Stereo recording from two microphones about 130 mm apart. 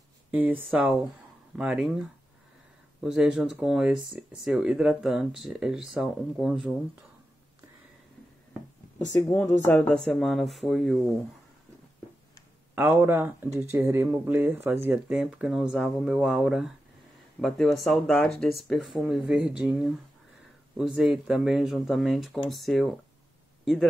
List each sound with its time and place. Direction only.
0.3 s speech: 15° right (ahead or behind)
9.7 s speech: 5° left (ahead or behind)
12.7 s speech: 15° right (ahead or behind); by 23.9 s centre (ahead or behind)